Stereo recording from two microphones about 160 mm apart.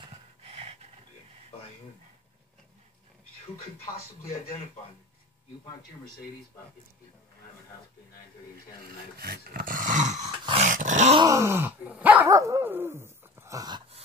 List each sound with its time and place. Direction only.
0.0 s a sound: 40° right (ahead or behind)
3.7 s speech: 70° left (ahead or behind)
9.2 s dog: 70° right (ahead or behind); by 11.1 s 50° right (ahead or behind)
11.1 s dog: 20° right (ahead or behind)